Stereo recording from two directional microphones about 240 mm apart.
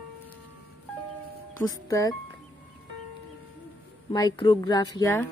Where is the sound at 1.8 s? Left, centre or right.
Centre.